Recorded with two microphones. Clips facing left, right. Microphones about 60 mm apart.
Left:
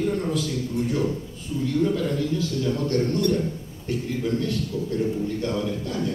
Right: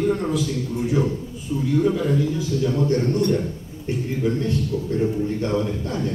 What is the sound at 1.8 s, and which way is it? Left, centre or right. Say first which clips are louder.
A man's voice: right 3 dB; centre.